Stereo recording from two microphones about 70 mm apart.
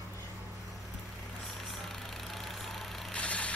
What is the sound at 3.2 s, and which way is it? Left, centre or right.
Vehicle, centre.